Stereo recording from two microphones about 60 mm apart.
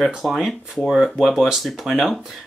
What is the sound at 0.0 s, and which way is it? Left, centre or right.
Speech, centre.